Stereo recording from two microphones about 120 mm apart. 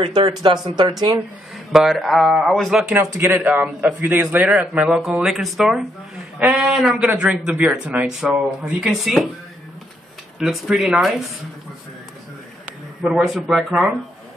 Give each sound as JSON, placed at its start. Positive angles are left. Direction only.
{"t": 0.4, "sound": "speech", "side_deg": -35}
{"t": 1.7, "sound": "a man's voice", "side_deg": 0}
{"t": 3.0, "sound": "a man's voice", "side_deg": -15}
{"t": 10.4, "sound": "a man's voice", "side_deg": 0}
{"t": 13.0, "sound": "a man's voice", "side_deg": 0}